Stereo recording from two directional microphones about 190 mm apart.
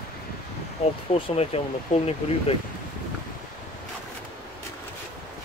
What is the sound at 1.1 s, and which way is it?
Speech, 30° left (ahead or behind).